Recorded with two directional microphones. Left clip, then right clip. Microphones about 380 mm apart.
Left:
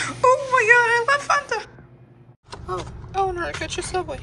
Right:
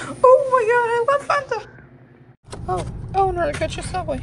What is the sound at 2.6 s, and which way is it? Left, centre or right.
Vehicle, right.